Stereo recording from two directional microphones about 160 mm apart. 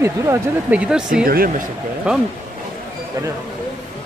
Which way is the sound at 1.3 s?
65° right (ahead or behind).